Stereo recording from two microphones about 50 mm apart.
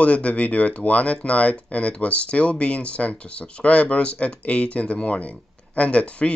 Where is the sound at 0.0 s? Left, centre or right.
Left.